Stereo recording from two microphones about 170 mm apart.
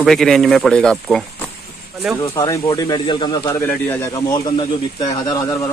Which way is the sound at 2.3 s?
20° left (ahead or behind).